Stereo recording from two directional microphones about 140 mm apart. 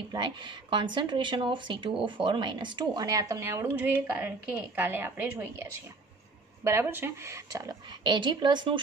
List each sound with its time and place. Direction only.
0.1 s a woman's voice: 35° right (ahead or behind)